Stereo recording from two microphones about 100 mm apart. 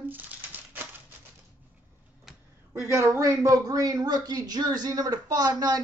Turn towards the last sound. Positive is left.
turn(degrees=-40)  # may be behind; listen again after turning